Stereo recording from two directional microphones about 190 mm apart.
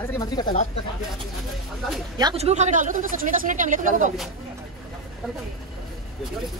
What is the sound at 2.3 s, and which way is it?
Speech, 35° right (ahead or behind).